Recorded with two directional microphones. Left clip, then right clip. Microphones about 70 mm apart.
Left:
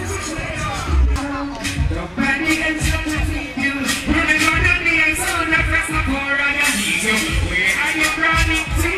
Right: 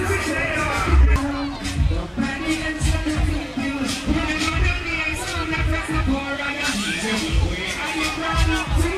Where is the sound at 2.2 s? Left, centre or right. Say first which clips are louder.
Left 7 dB; left.